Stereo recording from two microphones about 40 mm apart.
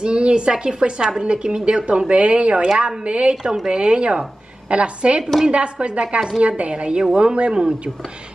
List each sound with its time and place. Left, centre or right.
0.0 s a woman's voice: right